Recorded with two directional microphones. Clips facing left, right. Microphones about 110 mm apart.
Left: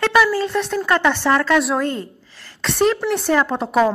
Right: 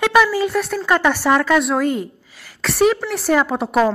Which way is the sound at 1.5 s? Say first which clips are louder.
Right 1 dB; centre (ahead or behind).